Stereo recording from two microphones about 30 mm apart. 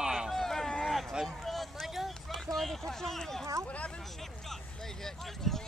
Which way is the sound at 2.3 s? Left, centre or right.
Centre.